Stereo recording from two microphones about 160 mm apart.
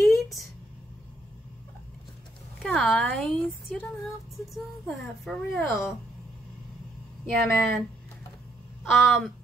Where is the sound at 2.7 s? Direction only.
5° left (ahead or behind).